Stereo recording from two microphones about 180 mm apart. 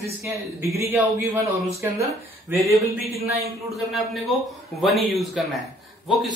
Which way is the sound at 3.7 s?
Centre (ahead or behind).